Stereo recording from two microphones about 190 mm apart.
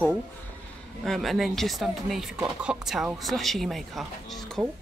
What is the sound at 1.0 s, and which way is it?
Speech, centre (ahead or behind).